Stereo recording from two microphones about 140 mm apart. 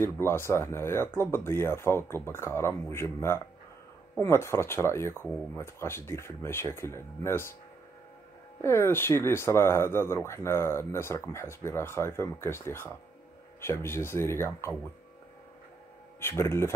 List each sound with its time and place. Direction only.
0.0 s speech: 15° left (ahead or behind)
8.5 s speech: 20° left (ahead or behind)
16.2 s speech: 15° left (ahead or behind)